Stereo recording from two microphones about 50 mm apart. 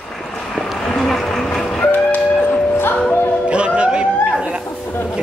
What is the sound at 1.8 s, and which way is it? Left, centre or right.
Music, left.